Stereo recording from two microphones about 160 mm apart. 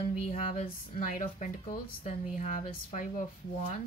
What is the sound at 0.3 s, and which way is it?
Speech, 40° left (ahead or behind).